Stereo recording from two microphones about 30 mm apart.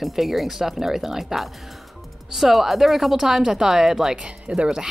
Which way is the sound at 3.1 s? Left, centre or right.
Centre.